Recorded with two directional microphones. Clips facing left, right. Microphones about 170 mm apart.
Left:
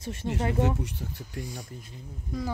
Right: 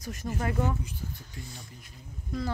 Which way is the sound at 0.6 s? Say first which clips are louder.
Left 3 dB; 80° left.